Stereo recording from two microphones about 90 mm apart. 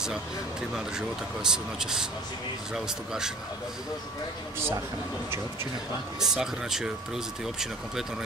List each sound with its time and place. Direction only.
0.0 s speech: 5° right (ahead or behind)
6.1 s speech: 5° right (ahead or behind)